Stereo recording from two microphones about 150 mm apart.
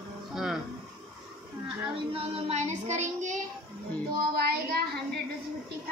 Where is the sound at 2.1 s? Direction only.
40° right (ahead or behind).